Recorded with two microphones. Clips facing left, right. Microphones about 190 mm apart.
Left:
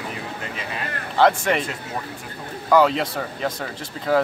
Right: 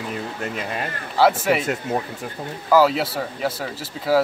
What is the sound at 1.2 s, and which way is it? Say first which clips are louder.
Speech: right 1 dB; 5° right (ahead or behind).